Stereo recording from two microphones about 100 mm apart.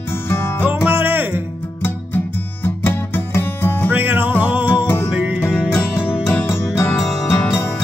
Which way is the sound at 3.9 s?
20° right (ahead or behind).